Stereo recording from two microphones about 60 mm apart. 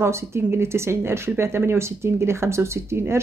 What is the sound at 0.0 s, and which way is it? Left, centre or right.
Speech, right.